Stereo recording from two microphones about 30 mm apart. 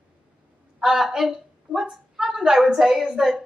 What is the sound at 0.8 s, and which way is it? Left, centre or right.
A woman's voice, centre.